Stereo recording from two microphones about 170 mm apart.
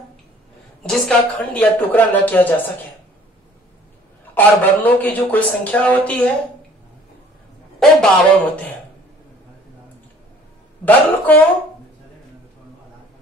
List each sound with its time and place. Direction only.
0.8 s a woman's voice: 5° left (ahead or behind)
4.4 s a woman's voice: 10° left (ahead or behind)
8.0 s a woman's voice: 10° left (ahead or behind)
10.9 s a woman's voice: 10° left (ahead or behind)